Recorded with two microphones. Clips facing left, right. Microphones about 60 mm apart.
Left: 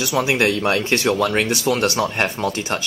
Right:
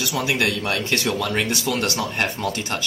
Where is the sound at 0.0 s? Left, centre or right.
Left.